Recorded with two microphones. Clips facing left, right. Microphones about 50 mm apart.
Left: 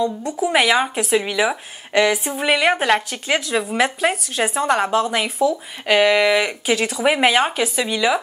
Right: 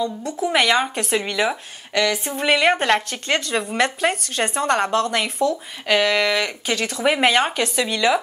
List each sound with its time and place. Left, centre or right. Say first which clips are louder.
0.0 s a woman's voice: left 3 dB; centre
1.9 s a sound: left 4 dB; centre
2.1 s a woman's voice: even; centre